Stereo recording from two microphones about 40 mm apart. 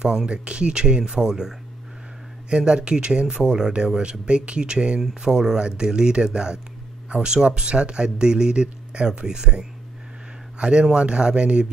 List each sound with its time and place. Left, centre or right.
0.0 s speech: right
2.5 s speech: right